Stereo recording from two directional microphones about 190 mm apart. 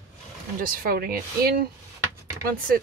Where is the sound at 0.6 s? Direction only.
50° right (ahead or behind).